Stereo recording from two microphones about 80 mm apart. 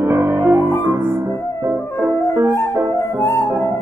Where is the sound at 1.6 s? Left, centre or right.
Right.